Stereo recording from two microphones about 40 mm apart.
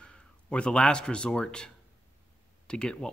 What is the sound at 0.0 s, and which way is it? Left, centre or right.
Speech, left.